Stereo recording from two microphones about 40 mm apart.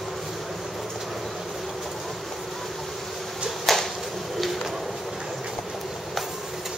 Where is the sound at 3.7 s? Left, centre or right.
Centre.